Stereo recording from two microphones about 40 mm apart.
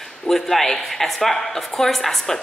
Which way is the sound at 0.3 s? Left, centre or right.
Centre.